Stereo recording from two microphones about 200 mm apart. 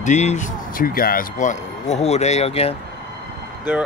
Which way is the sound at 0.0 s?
35° left (ahead or behind).